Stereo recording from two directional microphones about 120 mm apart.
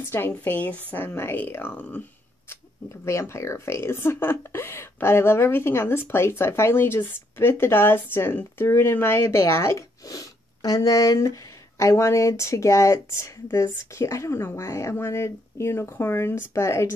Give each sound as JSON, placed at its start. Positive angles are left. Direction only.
{"t": 0.1, "sound": "speech", "side_deg": 15}
{"t": 2.5, "sound": "speech", "side_deg": 25}